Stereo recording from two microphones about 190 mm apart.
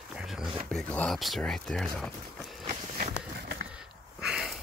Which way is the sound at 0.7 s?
5° left (ahead or behind).